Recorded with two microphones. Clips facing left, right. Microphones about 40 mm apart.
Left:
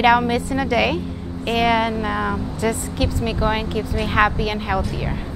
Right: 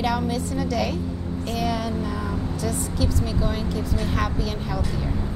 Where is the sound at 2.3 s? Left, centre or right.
Left.